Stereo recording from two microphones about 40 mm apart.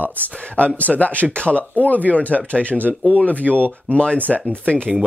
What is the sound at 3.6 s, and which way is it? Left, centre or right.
Speech, right.